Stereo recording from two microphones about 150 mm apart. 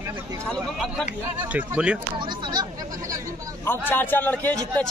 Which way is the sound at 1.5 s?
10° right (ahead or behind).